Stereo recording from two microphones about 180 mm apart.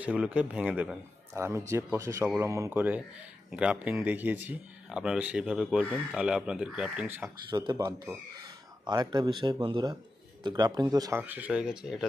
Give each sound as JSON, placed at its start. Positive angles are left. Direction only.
{"t": 0.0, "sound": "speech", "side_deg": -5}
{"t": 7.5, "sound": "speech", "side_deg": -20}